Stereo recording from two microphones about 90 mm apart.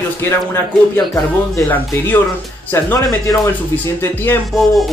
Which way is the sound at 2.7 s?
25° left (ahead or behind).